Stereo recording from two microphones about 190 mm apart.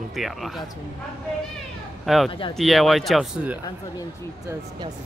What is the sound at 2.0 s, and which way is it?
Speech, centre (ahead or behind).